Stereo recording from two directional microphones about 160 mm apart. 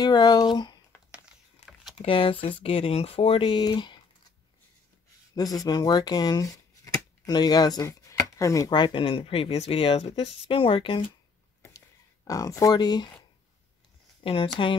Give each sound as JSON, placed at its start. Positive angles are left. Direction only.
{"t": 0.0, "sound": "speech", "side_deg": 25}
{"t": 1.6, "sound": "a sound", "side_deg": 45}
{"t": 2.0, "sound": "speech", "side_deg": 35}
{"t": 5.3, "sound": "speech", "side_deg": 25}
{"t": 12.3, "sound": "speech", "side_deg": 20}
{"t": 14.2, "sound": "speech", "side_deg": 35}